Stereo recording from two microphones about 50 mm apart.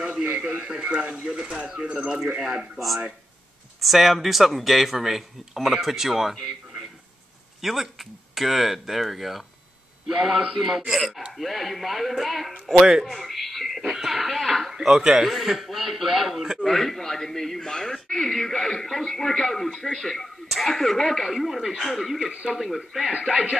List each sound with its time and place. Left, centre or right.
0.3 s speech: right
2.3 s speech: centre
7.6 s speech: centre